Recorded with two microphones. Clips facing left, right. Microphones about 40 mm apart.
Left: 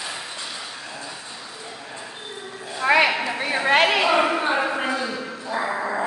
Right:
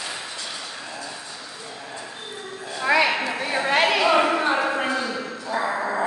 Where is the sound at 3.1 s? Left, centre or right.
Centre.